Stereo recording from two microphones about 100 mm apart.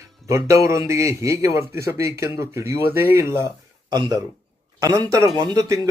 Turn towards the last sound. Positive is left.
turn(degrees=-35)  # may be behind; listen again after turning